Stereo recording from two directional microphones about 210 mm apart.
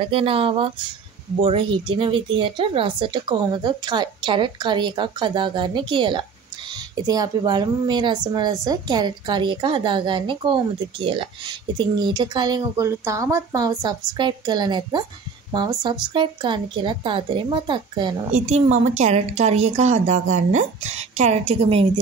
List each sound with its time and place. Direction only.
0.1 s speech: 25° right (ahead or behind)
18.3 s a woman's voice: 30° right (ahead or behind)